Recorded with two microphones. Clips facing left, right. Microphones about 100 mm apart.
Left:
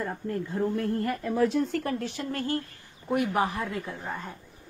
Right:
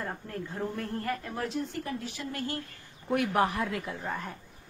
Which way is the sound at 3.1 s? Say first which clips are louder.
Left 1 dB; centre (ahead or behind).